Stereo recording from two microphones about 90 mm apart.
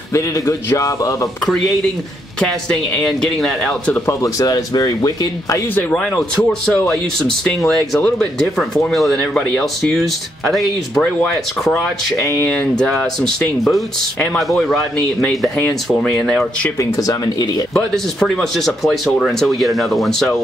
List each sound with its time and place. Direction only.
0.1 s speech: 30° left (ahead or behind)
2.7 s speech: 5° left (ahead or behind)
4.0 s speech: 35° left (ahead or behind)
5.9 s speech: 10° left (ahead or behind)
12.2 s speech: 30° left (ahead or behind)
12.4 s speech: 15° left (ahead or behind)
16.7 s speech: 35° left (ahead or behind)
17.7 s speech: 5° left (ahead or behind)